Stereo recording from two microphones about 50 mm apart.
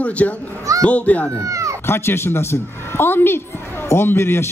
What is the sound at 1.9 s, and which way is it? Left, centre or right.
A woman's voice, left.